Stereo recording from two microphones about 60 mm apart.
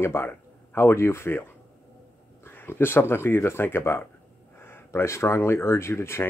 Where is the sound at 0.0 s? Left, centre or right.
Left.